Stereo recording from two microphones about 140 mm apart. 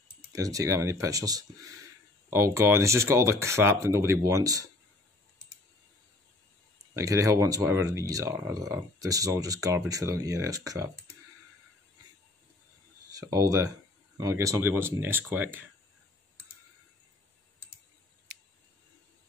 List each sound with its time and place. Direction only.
0.3 s speech: 25° right (ahead or behind)
7.0 s speech: 20° right (ahead or behind)
13.1 s speech: 25° right (ahead or behind)